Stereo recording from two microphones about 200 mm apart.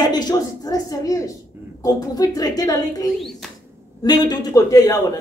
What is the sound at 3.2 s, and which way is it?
Speech, centre (ahead or behind).